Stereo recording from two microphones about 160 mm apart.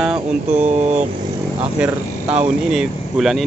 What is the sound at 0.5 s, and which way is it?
Speech, 45° right (ahead or behind).